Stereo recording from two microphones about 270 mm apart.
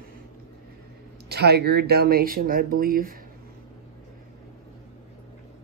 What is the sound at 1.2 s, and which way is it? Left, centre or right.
Speech, right.